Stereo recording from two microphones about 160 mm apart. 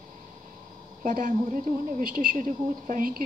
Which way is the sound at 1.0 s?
55° right (ahead or behind).